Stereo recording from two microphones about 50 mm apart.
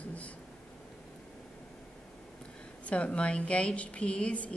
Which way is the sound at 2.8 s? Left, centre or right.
Left.